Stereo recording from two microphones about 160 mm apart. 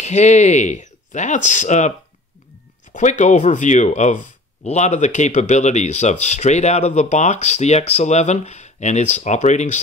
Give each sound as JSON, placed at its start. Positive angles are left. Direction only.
{"t": 0.0, "sound": "speech", "side_deg": 45}